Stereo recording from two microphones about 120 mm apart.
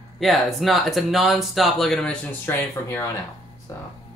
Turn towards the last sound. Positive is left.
turn(degrees=20)  # may be behind; listen again after turning